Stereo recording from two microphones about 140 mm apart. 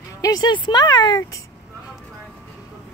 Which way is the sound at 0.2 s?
30° left (ahead or behind).